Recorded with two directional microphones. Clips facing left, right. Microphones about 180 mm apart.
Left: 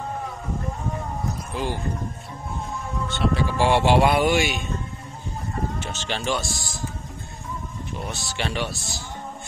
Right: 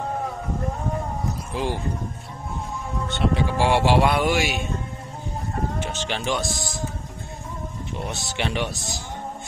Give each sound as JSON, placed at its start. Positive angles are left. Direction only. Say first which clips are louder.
{"t": 1.5, "sound": "speech", "louder": "right 2 dB", "side_deg": -25}
{"t": 3.1, "sound": "speech", "louder": "right 1 dB", "side_deg": -15}
{"t": 5.8, "sound": "speech", "louder": "right 2 dB", "side_deg": -15}
{"t": 8.0, "sound": "speech", "louder": "right 2 dB", "side_deg": -20}